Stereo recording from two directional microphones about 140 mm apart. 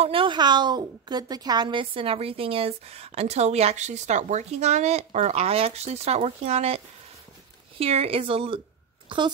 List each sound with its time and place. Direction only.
0.0 s a woman's voice: 40° right (ahead or behind)
7.8 s a woman's voice: 45° right (ahead or behind)